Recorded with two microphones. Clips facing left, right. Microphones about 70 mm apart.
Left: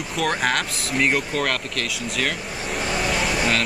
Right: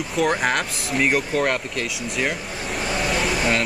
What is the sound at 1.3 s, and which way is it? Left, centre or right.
Speech, centre.